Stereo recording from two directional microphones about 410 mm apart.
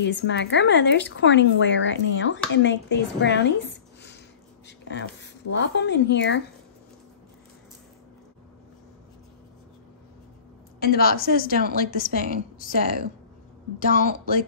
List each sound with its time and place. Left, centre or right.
0.0 s a woman's voice: left
10.8 s a woman's voice: left